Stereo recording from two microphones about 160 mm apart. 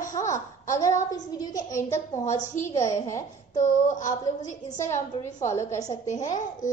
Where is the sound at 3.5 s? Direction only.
50° left (ahead or behind).